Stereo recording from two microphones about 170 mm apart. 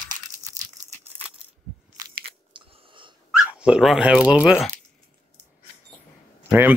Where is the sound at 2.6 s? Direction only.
30° right (ahead or behind).